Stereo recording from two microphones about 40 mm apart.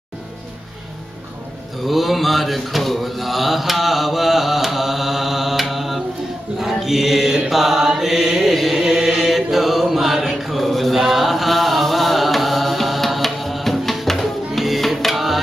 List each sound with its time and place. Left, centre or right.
1.9 s mantra: centre
15.0 s music: centre